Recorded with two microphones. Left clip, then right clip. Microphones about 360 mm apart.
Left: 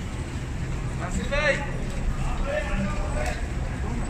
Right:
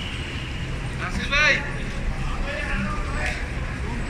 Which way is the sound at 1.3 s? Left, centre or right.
Left.